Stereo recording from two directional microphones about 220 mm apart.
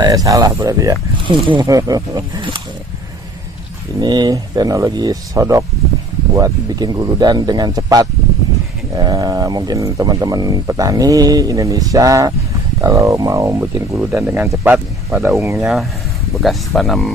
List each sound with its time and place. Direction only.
0.0 s speech: 15° right (ahead or behind)
4.0 s speech: 20° right (ahead or behind)
16.4 s speech: centre (ahead or behind)